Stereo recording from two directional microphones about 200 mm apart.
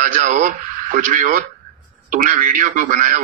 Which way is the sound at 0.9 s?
45° right (ahead or behind).